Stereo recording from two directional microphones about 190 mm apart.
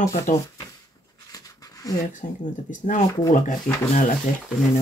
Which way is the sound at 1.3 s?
20° left (ahead or behind).